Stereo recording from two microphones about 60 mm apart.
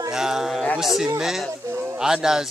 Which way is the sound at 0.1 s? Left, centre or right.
Centre.